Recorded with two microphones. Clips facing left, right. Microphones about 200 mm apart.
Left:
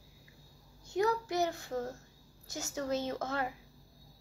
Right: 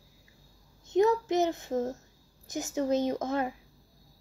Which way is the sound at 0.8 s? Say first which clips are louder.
Right 7 dB; 20° right (ahead or behind).